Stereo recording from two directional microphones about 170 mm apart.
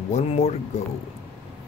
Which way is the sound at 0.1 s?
40° left (ahead or behind).